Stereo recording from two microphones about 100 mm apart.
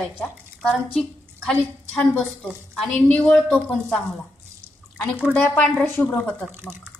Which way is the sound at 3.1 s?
20° left (ahead or behind).